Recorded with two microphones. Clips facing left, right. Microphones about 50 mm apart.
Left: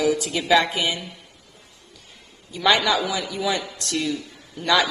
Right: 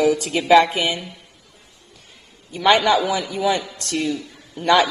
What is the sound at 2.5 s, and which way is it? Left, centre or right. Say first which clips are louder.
A man's voice: right 4 dB; right.